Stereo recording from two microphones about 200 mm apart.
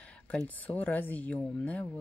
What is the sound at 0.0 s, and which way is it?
Speech, 5° left (ahead or behind).